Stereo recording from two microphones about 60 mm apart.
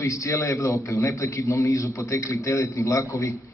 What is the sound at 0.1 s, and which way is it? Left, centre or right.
A man's voice, left.